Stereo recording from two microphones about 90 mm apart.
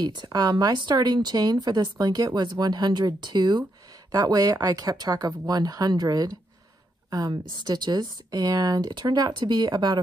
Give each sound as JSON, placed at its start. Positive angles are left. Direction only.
{"t": 0.0, "sound": "speech", "side_deg": -55}